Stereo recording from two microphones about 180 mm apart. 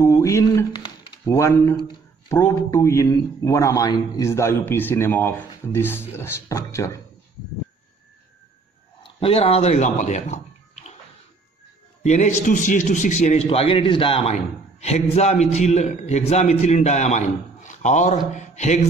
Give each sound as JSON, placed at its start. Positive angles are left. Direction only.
{"t": 0.0, "sound": "a man's voice", "side_deg": 15}
{"t": 9.0, "sound": "speech", "side_deg": 30}
{"t": 12.0, "sound": "a man's voice", "side_deg": 40}